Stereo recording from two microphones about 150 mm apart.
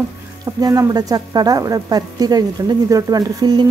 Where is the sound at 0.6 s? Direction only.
25° right (ahead or behind).